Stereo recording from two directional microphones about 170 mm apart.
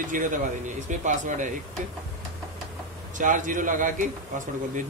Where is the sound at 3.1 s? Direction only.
50° right (ahead or behind).